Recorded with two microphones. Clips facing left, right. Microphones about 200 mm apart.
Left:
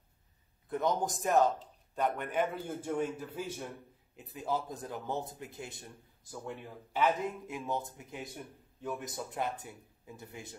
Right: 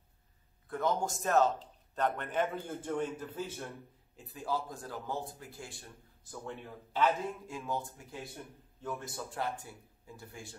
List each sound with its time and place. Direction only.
0.7 s speech: 20° left (ahead or behind)